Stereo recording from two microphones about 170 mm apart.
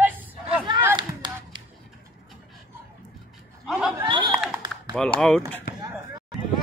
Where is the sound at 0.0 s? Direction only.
10° right (ahead or behind).